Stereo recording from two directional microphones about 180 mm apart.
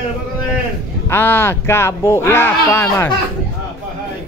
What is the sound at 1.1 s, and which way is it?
A man's voice, 10° left (ahead or behind).